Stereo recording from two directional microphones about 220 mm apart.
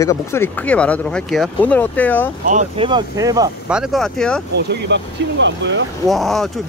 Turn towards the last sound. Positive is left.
turn(degrees=0)  # may be behind; listen again after turning